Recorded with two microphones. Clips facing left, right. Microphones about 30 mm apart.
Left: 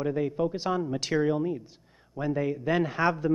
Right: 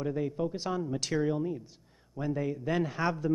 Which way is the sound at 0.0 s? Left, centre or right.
Centre.